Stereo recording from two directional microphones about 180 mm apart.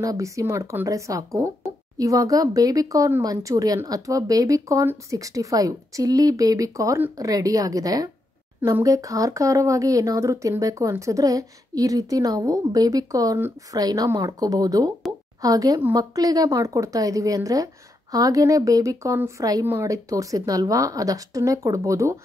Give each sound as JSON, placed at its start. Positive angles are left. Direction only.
{"t": 0.0, "sound": "speech", "side_deg": -20}
{"t": 15.1, "sound": "plop", "side_deg": -20}
{"t": 15.4, "sound": "speech", "side_deg": -20}